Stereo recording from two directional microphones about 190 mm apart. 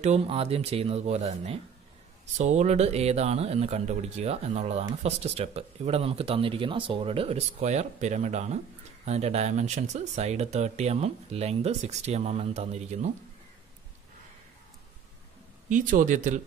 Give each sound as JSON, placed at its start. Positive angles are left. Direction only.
{"t": 0.0, "sound": "speech", "side_deg": -35}
{"t": 15.7, "sound": "speech", "side_deg": -45}